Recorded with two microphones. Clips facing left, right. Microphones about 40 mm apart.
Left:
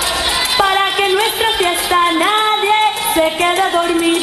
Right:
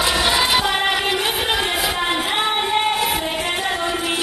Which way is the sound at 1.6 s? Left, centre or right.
Left.